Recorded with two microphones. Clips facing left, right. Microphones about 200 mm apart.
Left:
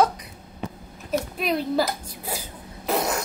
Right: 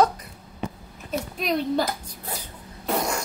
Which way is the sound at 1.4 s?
5° left (ahead or behind).